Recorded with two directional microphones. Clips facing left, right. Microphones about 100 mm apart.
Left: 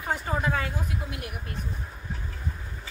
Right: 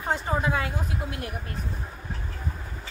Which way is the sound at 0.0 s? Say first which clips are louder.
Right 2 dB; 20° right (ahead or behind).